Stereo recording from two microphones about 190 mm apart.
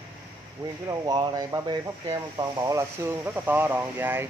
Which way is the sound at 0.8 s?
20° right (ahead or behind).